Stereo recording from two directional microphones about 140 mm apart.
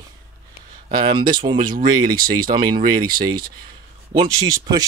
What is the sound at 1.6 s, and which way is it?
Speech, 85° right.